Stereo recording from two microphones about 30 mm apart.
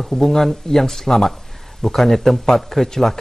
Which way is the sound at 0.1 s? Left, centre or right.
Centre.